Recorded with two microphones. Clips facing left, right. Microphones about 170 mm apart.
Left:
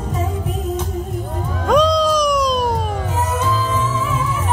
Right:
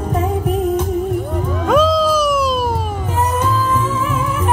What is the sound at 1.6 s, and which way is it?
Cat, 5° right (ahead or behind).